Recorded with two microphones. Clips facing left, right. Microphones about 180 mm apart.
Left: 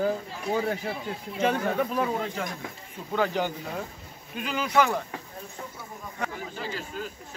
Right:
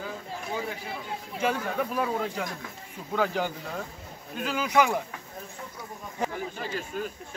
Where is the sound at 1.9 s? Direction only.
5° right (ahead or behind).